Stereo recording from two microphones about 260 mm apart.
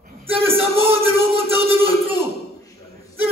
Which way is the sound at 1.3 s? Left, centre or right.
Right.